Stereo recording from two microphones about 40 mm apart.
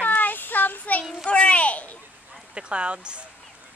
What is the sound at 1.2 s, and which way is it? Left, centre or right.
Speech, left.